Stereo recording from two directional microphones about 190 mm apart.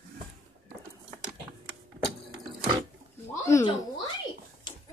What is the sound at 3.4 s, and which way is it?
Speech, 15° left (ahead or behind).